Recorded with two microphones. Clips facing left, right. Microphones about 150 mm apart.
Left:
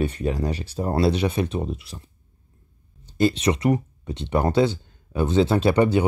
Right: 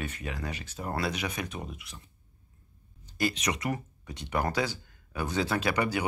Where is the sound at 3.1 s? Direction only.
30° left (ahead or behind).